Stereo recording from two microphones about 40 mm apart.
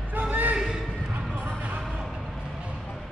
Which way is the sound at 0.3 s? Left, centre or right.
Right.